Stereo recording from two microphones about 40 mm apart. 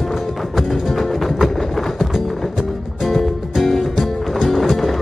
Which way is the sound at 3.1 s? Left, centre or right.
Centre.